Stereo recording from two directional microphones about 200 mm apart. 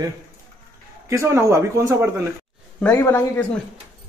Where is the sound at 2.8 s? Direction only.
10° left (ahead or behind).